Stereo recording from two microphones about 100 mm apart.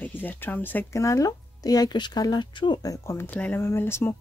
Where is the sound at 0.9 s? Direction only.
30° left (ahead or behind).